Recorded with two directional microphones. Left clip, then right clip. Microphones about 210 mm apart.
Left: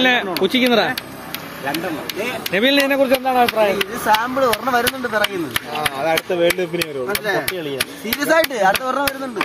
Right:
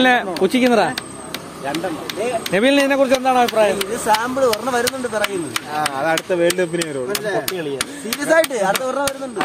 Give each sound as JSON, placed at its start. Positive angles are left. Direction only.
{"t": 0.4, "sound": "speech", "side_deg": -10}
{"t": 2.5, "sound": "speech", "side_deg": -10}
{"t": 6.0, "sound": "speech", "side_deg": -25}
{"t": 8.1, "sound": "speech", "side_deg": -5}